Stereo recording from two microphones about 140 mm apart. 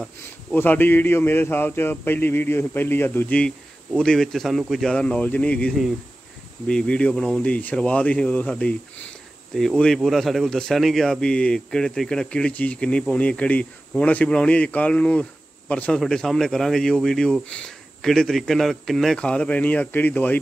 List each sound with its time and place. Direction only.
0.6 s speech: 15° left (ahead or behind)
6.7 s speech: 5° left (ahead or behind)